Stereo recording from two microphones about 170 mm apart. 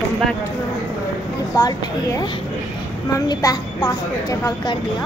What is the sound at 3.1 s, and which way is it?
A woman's voice, 20° left (ahead or behind).